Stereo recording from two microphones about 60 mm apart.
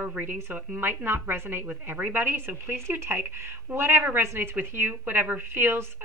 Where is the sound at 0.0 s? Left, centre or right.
Right.